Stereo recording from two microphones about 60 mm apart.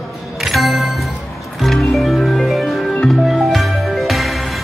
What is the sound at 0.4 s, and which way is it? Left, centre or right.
Music, centre.